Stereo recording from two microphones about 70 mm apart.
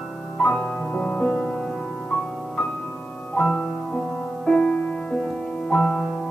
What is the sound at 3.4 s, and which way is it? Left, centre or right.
Music, centre.